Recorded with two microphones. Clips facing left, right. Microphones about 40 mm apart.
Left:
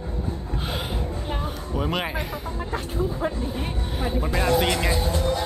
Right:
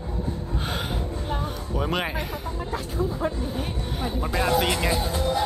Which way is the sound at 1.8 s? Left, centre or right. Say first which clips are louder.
Even; centre.